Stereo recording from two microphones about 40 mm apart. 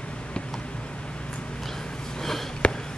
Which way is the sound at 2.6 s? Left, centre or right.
Left.